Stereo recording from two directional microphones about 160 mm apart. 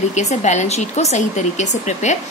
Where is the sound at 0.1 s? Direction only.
45° left (ahead or behind).